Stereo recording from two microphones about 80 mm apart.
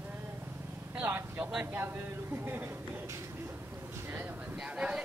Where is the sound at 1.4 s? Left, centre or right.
Centre.